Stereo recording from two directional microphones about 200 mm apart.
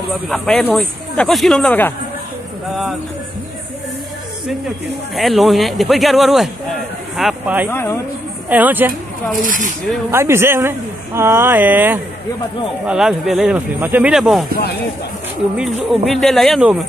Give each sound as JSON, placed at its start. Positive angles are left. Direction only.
{"t": 0.3, "sound": "speech", "side_deg": 5}
{"t": 5.1, "sound": "speech", "side_deg": 0}
{"t": 7.7, "sound": "speech", "side_deg": 10}
{"t": 8.5, "sound": "speech", "side_deg": -10}
{"t": 9.4, "sound": "speech", "side_deg": -40}
{"t": 10.1, "sound": "speech", "side_deg": -10}
{"t": 16.1, "sound": "speech", "side_deg": 0}